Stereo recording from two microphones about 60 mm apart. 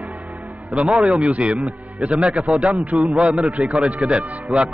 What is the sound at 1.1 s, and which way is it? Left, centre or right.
Speech, centre.